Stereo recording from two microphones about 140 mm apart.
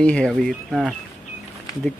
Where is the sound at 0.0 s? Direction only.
5° left (ahead or behind).